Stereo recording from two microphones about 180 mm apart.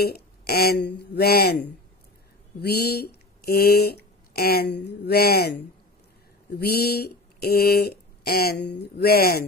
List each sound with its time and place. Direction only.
0.0 s speech: 60° left (ahead or behind)
2.6 s speech: 60° left (ahead or behind)
6.5 s speech: 60° left (ahead or behind)